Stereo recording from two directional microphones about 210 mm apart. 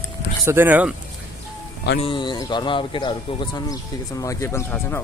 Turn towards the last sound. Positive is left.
turn(degrees=10)  # may be behind; listen again after turning